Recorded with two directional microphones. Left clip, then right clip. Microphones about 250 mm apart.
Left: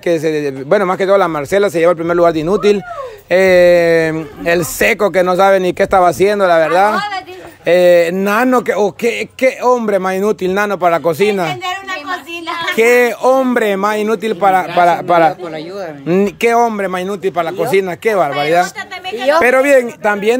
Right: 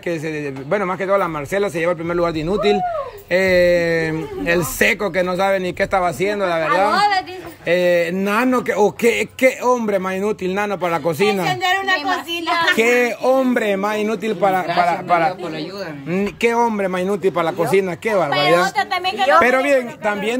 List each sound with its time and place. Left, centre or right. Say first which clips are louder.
0.0 s a man's voice: left 9 dB; centre
12.7 s speech: left 6 dB; centre
14.7 s a man's voice: left 5 dB; left
16.1 s speech: left 7 dB; centre